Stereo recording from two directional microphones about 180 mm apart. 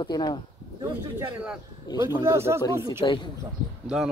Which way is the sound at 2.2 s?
15° right (ahead or behind).